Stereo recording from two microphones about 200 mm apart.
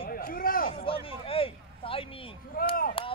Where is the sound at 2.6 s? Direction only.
45° left (ahead or behind).